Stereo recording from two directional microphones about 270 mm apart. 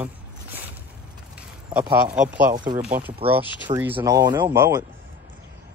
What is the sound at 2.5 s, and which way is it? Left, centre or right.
Speech, centre.